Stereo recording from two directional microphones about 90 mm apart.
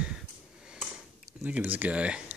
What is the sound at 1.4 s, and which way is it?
Speech, 20° right (ahead or behind).